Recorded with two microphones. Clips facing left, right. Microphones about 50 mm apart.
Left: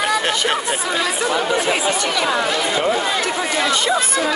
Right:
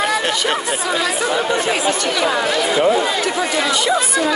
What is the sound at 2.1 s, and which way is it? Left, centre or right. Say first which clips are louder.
Speech: right 1 dB; centre.